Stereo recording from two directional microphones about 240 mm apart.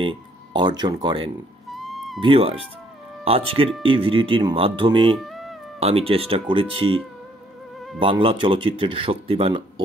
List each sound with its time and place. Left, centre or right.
0.0 s speech: centre
1.7 s music: centre
2.1 s speech: right
5.2 s cat: centre
5.8 s speech: right
8.0 s speech: right